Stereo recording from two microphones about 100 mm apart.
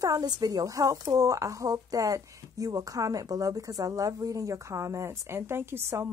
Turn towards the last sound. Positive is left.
turn(degrees=-25)  # may be behind; listen again after turning